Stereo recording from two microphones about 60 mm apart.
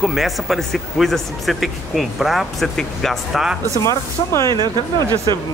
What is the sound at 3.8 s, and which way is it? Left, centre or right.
Speech, left.